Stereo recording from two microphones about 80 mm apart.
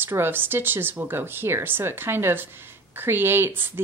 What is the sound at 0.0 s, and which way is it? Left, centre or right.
A woman's voice, right.